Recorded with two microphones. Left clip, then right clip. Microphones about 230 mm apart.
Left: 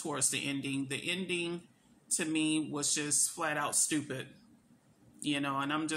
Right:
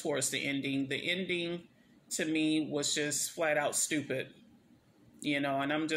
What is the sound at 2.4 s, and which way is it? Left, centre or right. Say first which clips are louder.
Speech: right 1 dB; left.